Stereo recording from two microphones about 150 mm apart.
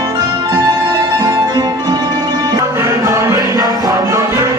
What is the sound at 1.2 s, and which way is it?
Music, 25° right (ahead or behind).